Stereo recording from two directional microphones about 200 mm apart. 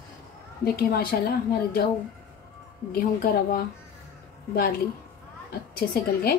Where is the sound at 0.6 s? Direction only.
50° left (ahead or behind).